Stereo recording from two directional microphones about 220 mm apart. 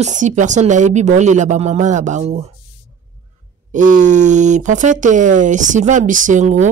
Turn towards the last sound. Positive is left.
turn(degrees=-35)  # may be behind; listen again after turning